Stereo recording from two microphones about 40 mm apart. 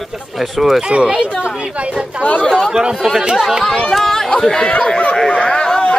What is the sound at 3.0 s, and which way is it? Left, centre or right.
Speech, centre.